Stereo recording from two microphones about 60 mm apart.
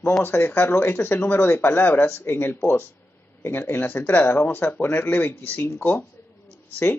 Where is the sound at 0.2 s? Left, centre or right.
Left.